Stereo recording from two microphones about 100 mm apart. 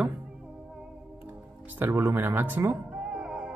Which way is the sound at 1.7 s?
20° right (ahead or behind).